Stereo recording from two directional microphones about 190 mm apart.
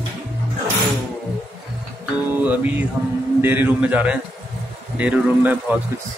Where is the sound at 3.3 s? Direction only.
10° right (ahead or behind).